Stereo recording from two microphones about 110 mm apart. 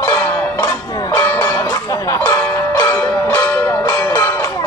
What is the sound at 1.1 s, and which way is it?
Music, 20° left (ahead or behind).